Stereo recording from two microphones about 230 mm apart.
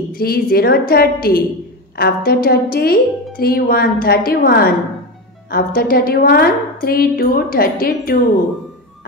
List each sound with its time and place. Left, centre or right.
0.1 s speech: left